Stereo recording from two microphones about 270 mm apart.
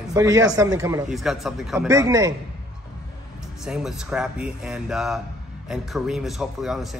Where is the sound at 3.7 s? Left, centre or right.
Centre.